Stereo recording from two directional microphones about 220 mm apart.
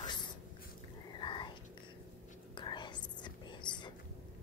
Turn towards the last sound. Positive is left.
turn(degrees=20)  # may be behind; listen again after turning